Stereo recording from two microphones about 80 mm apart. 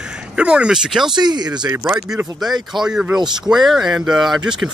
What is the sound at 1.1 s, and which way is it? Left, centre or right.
Speech, right.